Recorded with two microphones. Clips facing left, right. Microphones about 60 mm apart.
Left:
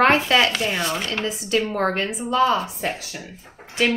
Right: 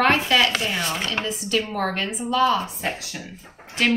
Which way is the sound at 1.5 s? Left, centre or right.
Left.